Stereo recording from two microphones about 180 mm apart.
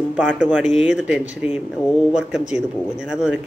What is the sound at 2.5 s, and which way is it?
Speech, 5° right (ahead or behind).